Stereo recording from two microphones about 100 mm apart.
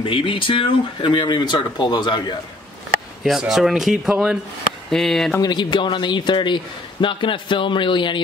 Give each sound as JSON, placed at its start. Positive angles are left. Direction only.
{"t": 0.0, "sound": "a man's voice", "side_deg": 60}
{"t": 3.3, "sound": "speech", "side_deg": -5}
{"t": 5.4, "sound": "a man's voice", "side_deg": 45}